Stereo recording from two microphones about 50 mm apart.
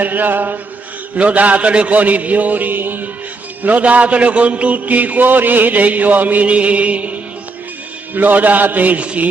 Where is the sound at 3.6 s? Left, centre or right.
Right.